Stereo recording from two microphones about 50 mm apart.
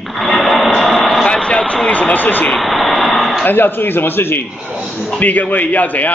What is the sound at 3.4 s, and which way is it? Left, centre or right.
Speech, left.